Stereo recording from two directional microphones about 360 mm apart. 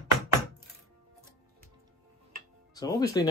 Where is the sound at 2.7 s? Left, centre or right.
Centre.